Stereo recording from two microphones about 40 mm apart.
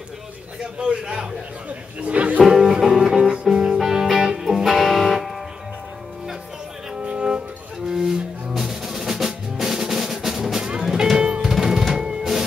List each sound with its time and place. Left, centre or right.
0.6 s a man's voice: right
1.7 s speech: right
2.4 s music: centre
4.6 s music: centre
7.0 s music: right
7.9 s music: centre
11.5 s music: centre